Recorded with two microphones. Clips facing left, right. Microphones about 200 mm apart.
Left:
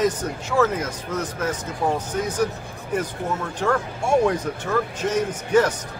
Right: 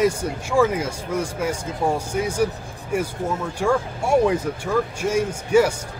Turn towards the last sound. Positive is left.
turn(degrees=-10)  # may be behind; listen again after turning